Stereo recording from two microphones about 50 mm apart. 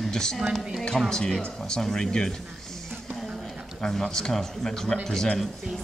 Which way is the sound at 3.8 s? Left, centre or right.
Centre.